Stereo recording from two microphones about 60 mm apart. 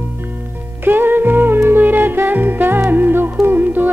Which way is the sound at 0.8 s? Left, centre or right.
Right.